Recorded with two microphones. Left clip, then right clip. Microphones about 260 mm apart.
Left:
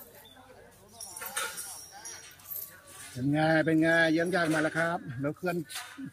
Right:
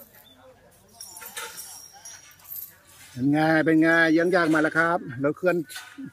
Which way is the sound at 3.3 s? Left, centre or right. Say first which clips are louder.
Right 5 dB; centre.